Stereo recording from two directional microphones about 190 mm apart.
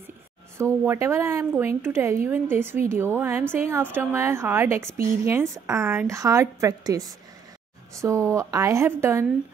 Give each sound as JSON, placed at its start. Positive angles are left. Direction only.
{"t": 0.6, "sound": "a woman's voice", "side_deg": -15}